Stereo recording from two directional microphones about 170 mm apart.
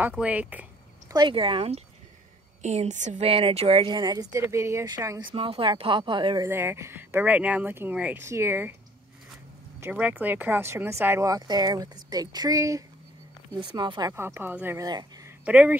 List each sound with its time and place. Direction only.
0.2 s speech: 10° right (ahead or behind)
1.1 s speech: 30° right (ahead or behind)
5.3 s speech: 30° right (ahead or behind); by 8.7 s 10° right (ahead or behind)
9.8 s speech: 10° right (ahead or behind)
14.1 s speech: 15° right (ahead or behind)
15.4 s speech: 10° right (ahead or behind)